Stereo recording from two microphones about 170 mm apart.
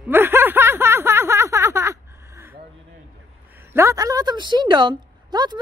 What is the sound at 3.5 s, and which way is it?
A woman's voice, 15° right (ahead or behind).